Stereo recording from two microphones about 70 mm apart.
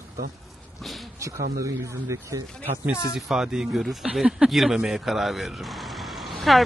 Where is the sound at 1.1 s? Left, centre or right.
Right.